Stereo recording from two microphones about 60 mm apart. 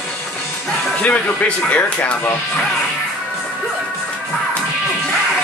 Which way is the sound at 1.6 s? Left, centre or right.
Left.